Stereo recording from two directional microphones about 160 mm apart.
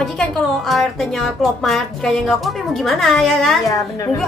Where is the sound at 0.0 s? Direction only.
Centre (ahead or behind).